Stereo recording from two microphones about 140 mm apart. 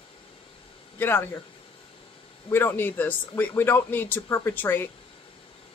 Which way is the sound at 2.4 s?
15° left (ahead or behind).